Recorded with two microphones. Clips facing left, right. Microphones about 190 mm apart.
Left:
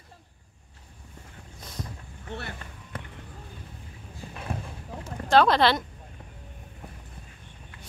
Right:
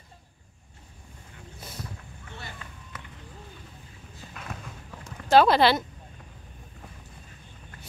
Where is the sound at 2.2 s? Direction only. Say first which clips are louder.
Left 7 dB; 65° left (ahead or behind).